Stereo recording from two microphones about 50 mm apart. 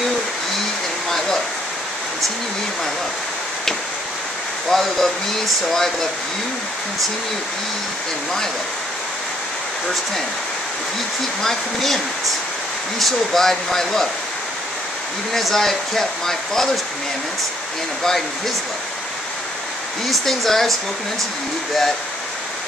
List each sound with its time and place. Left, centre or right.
4.6 s speech: centre
11.4 s speech: centre
13.0 s speech: centre
15.3 s speech: centre
20.1 s speech: centre